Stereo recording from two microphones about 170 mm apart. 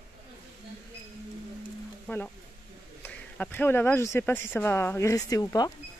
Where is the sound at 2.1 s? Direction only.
10° left (ahead or behind).